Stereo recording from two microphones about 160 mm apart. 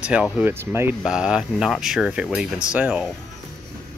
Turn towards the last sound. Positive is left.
turn(degrees=-5)  # may be behind; listen again after turning